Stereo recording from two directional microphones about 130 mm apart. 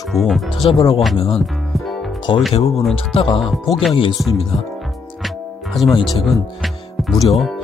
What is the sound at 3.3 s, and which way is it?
Speech, centre (ahead or behind).